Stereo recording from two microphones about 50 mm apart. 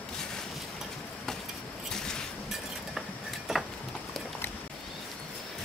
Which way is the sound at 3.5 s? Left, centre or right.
Centre.